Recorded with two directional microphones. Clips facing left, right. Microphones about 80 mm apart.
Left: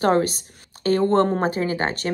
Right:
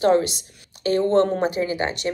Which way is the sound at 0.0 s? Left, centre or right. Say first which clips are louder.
Right 1 dB; left.